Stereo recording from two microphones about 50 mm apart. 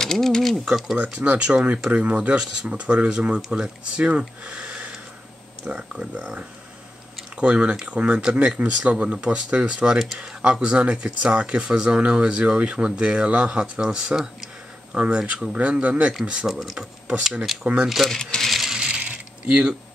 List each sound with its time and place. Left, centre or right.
0.0 s speech: centre
0.7 s speech: centre
1.2 s speech: right
17.5 s speech: centre
18.1 s speech: centre
18.5 s sewing machine: centre
19.0 s a sound: right